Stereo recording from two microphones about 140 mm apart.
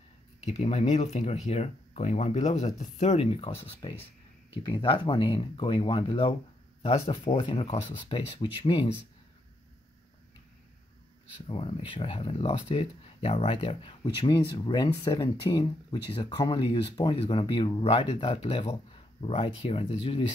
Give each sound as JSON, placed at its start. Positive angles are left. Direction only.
{"t": 0.5, "sound": "speech", "side_deg": 50}
{"t": 7.3, "sound": "speech", "side_deg": 40}
{"t": 11.4, "sound": "speech", "side_deg": 45}